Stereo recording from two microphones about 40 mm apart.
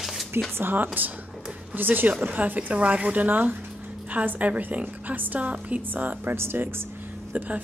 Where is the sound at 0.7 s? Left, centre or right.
Right.